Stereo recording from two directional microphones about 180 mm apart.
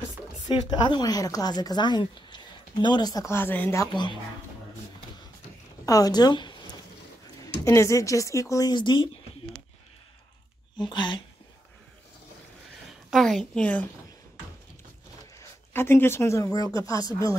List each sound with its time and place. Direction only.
0.5 s speech: 25° left (ahead or behind)
5.9 s speech: 20° left (ahead or behind)
7.6 s speech: 15° left (ahead or behind)
10.8 s speech: 25° left (ahead or behind)
13.1 s a woman's voice: centre (ahead or behind)
15.3 s speech: 15° left (ahead or behind)